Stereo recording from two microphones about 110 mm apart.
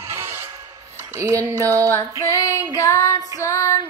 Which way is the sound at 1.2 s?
30° right (ahead or behind).